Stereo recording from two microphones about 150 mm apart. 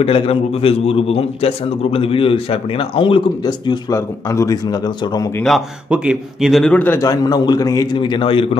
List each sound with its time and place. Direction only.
0.0 s a man's voice: 40° left (ahead or behind)
5.4 s a man's voice: 5° right (ahead or behind); by 8.5 s 35° left (ahead or behind)